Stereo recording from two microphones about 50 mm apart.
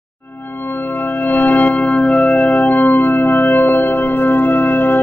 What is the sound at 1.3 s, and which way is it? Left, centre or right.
Music, left.